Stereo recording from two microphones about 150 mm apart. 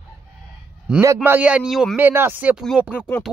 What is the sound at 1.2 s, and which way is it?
Speech, 10° right (ahead or behind).